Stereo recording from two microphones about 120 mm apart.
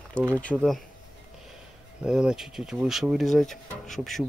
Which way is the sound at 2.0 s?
5° right (ahead or behind).